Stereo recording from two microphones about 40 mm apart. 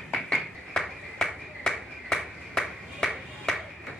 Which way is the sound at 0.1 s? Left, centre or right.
Centre.